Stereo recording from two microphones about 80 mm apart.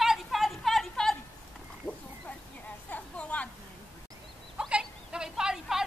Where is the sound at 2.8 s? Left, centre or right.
Centre.